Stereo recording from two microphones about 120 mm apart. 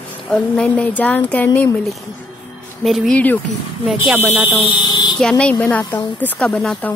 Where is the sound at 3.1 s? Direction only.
15° left (ahead or behind).